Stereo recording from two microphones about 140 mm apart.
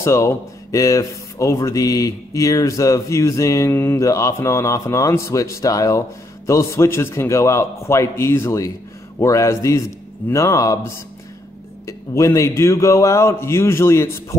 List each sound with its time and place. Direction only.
0.0 s speech: 20° left (ahead or behind)